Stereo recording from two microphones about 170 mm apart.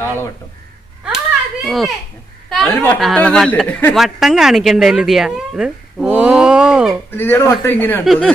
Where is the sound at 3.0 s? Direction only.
5° left (ahead or behind).